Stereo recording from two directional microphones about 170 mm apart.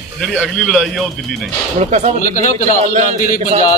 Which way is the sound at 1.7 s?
40° right (ahead or behind).